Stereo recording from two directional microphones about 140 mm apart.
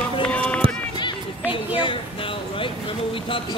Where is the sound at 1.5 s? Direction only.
40° left (ahead or behind).